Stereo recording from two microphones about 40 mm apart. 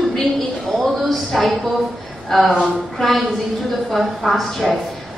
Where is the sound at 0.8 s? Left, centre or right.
Centre.